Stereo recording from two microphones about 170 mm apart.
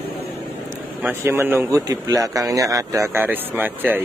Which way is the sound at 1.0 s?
10° right (ahead or behind).